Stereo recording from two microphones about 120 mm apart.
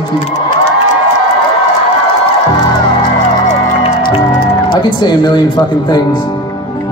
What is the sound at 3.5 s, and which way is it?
Music, 60° left (ahead or behind).